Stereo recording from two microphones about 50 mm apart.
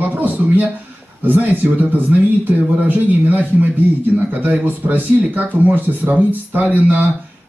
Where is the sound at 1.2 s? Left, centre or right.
Right.